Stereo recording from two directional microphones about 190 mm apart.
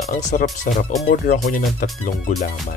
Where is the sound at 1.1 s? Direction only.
45° left (ahead or behind).